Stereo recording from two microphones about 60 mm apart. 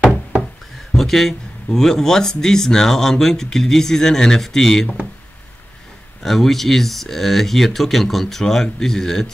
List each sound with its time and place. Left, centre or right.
0.9 s speech: centre
6.2 s speech: centre